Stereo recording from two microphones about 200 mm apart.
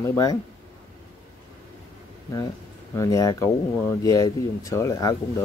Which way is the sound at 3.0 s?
15° left (ahead or behind).